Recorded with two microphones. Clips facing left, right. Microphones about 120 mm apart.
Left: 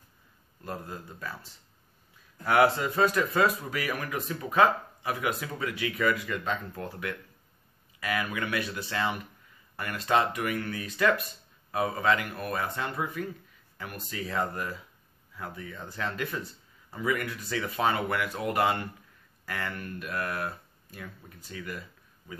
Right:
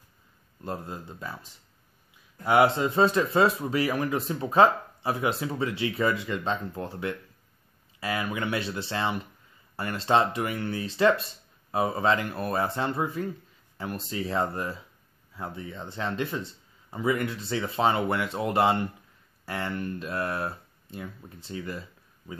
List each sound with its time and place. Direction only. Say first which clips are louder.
0.7 s speech: right 3 dB; 25° right (ahead or behind)